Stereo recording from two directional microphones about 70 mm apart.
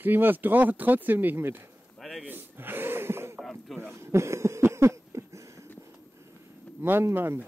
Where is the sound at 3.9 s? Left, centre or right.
Right.